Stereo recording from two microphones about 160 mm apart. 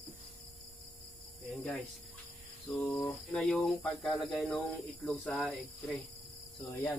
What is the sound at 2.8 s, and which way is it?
Speech, centre (ahead or behind).